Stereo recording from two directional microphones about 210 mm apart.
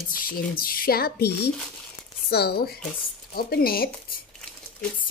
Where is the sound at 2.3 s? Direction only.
50° left (ahead or behind).